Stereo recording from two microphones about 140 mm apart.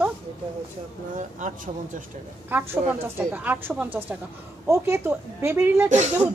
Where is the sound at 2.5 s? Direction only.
15° right (ahead or behind).